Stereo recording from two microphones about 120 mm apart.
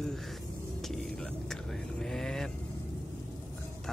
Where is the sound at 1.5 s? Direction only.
5° left (ahead or behind).